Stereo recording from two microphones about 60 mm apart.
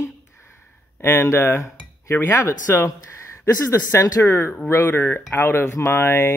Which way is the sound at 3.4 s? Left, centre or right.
Left.